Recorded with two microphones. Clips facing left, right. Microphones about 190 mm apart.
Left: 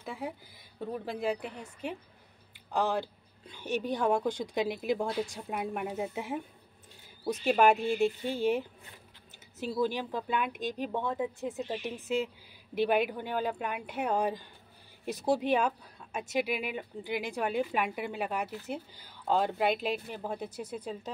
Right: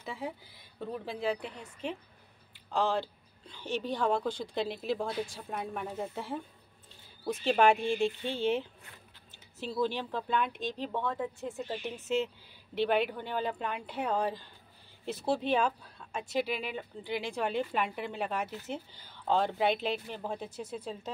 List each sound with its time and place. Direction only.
0.0 s a woman's voice: centre (ahead or behind)
8.2 s a woman's voice: 15° left (ahead or behind)